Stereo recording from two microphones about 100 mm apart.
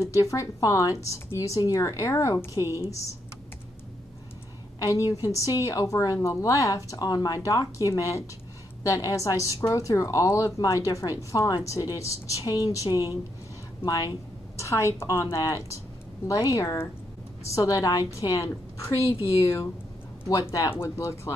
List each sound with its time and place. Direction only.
0.0 s a woman's voice: 30° left (ahead or behind)
4.7 s a woman's voice: 35° left (ahead or behind)
20.7 s a woman's voice: 25° left (ahead or behind)